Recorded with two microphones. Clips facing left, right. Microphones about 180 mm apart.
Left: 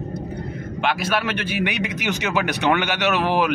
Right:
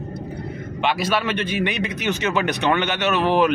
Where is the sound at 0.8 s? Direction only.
Centre (ahead or behind).